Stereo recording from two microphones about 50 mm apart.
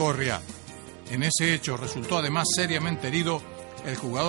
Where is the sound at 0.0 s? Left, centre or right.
Right.